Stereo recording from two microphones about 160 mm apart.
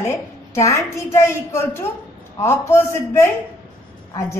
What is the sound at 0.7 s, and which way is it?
A woman's voice, 20° left (ahead or behind).